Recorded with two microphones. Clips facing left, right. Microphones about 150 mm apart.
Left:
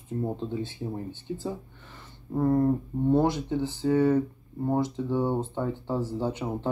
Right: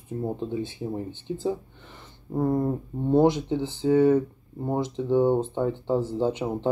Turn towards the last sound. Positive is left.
turn(degrees=-20)  # may be behind; listen again after turning